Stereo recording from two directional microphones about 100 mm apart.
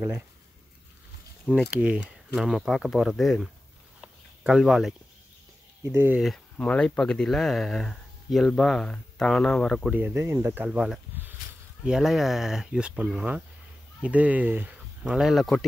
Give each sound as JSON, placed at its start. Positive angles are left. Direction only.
{"t": 1.7, "sound": "speech", "side_deg": -10}
{"t": 4.0, "sound": "a sound", "side_deg": -5}
{"t": 5.9, "sound": "speech", "side_deg": -20}
{"t": 6.2, "sound": "speech", "side_deg": 5}
{"t": 9.8, "sound": "speech", "side_deg": -15}
{"t": 10.6, "sound": "speech", "side_deg": -5}
{"t": 15.0, "sound": "speech", "side_deg": -5}